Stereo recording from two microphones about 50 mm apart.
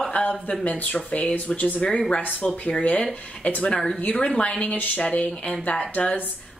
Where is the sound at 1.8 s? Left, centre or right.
Centre.